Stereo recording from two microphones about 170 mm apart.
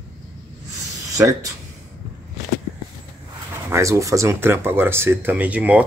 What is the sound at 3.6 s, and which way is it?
Speech, 15° right (ahead or behind).